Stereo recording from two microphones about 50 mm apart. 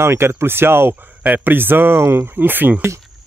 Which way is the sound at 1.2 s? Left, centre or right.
Right.